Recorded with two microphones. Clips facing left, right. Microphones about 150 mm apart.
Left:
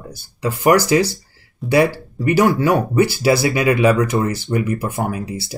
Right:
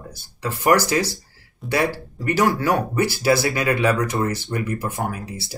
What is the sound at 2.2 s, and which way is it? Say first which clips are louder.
Speech: left 5 dB; 20° left (ahead or behind).